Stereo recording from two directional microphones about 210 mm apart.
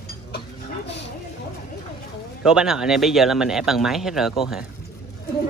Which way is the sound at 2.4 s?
5° right (ahead or behind).